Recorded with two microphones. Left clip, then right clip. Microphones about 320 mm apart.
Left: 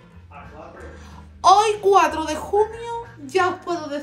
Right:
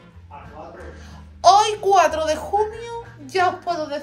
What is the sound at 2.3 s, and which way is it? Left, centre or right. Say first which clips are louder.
A woman's voice: even; centre.